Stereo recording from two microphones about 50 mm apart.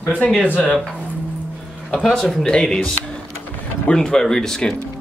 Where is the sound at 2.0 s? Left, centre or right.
Centre.